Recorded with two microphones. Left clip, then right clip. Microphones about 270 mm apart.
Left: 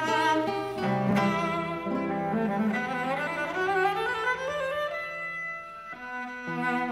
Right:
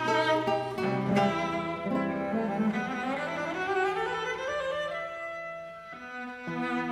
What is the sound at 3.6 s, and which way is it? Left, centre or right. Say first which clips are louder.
Music: left 3 dB; left.